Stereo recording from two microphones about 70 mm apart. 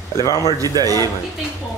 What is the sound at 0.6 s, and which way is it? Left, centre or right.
Speech, right.